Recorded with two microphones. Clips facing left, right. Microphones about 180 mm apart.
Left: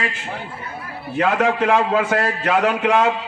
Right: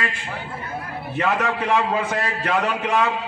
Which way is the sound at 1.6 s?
90° left.